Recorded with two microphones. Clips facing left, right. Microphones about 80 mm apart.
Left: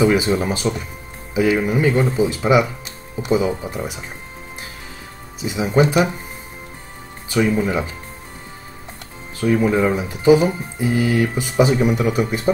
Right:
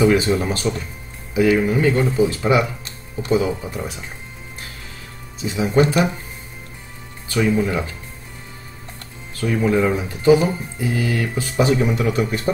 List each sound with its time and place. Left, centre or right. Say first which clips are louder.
0.0 s speech: even; centre
5.4 s speech: even; centre
7.2 s speech: left 1 dB; centre
9.4 s speech: left 2 dB; centre